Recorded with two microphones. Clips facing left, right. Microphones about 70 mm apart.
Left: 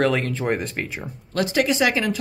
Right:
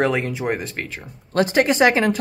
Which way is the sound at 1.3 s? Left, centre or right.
Right.